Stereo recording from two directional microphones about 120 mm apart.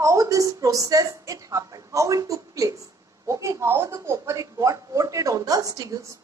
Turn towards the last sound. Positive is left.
turn(degrees=-30)  # may be behind; listen again after turning